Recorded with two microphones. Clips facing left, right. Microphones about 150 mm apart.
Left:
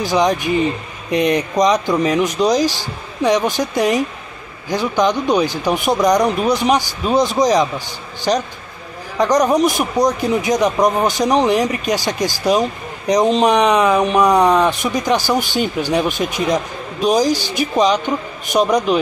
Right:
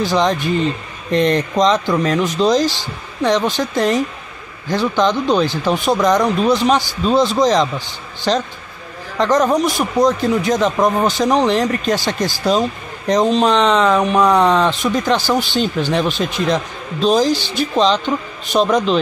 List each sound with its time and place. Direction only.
0.0 s a man's voice: 15° left (ahead or behind)